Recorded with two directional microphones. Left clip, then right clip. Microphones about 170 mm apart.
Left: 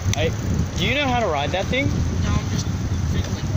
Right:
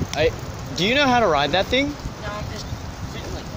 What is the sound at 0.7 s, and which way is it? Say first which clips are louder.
Speech: right 4 dB; 25° right (ahead or behind).